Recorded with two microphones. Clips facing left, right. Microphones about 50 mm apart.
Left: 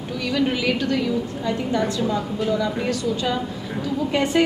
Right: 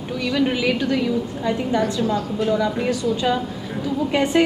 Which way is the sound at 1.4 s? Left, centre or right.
Right.